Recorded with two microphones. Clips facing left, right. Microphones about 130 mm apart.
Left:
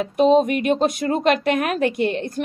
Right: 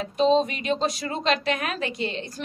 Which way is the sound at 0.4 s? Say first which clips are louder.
Left 6 dB; 55° left (ahead or behind).